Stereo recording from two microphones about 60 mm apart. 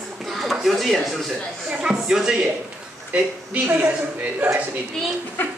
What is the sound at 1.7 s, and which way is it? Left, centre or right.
Speech, centre.